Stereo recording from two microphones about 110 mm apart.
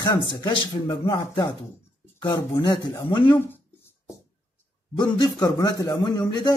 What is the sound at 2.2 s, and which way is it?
Speech, 30° left (ahead or behind).